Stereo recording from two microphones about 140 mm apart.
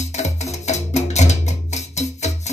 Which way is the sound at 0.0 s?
55° left (ahead or behind).